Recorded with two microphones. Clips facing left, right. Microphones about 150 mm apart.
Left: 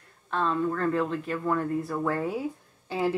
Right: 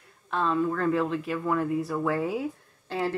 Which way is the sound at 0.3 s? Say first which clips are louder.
Right 1 dB; 5° right (ahead or behind).